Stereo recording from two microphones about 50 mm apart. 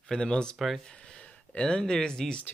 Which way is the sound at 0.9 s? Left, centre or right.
Left.